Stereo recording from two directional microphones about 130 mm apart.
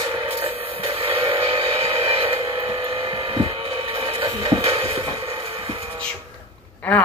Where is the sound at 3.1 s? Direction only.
40° right (ahead or behind).